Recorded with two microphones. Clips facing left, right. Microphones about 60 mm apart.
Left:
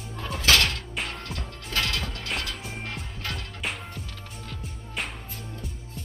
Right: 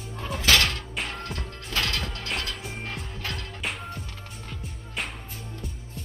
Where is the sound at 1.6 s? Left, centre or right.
Centre.